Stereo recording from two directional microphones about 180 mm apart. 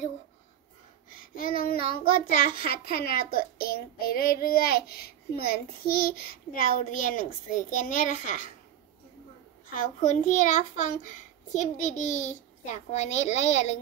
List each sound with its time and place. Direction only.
1.1 s a child's voice: 50° left (ahead or behind)
9.7 s a child's voice: 45° left (ahead or behind)